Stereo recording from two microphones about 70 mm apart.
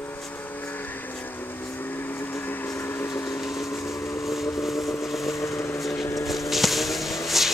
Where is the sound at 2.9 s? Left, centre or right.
Left.